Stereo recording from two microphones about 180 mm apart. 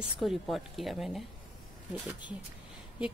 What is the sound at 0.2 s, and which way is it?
Speech, centre (ahead or behind).